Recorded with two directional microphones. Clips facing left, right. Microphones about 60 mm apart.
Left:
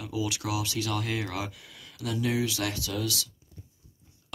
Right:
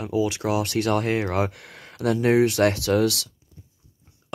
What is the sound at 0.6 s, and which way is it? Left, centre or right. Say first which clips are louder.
Speech: right 9 dB; right.